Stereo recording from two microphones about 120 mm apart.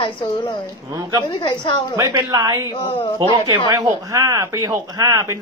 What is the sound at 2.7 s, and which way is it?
Speech, 45° left (ahead or behind).